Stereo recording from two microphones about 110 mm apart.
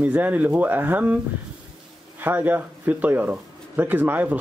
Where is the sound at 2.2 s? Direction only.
15° right (ahead or behind).